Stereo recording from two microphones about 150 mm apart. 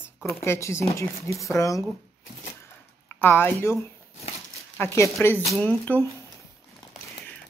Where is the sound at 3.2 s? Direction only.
15° left (ahead or behind).